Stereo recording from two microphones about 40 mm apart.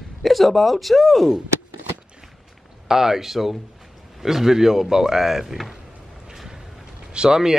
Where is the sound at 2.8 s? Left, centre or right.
Centre.